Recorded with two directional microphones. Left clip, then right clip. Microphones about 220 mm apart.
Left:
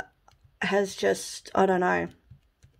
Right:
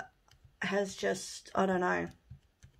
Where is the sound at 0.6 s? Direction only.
40° left (ahead or behind).